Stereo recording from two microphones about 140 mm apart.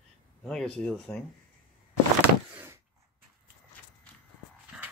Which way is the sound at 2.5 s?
20° right (ahead or behind).